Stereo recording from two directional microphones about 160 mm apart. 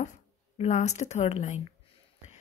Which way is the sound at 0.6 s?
45° left (ahead or behind).